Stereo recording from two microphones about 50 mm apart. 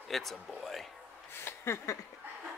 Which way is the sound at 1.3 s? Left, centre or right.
Left.